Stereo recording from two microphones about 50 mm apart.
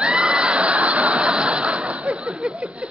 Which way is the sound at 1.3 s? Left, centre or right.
Right.